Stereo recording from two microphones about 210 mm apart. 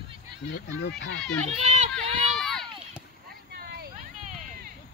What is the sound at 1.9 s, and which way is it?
Run, 5° left (ahead or behind).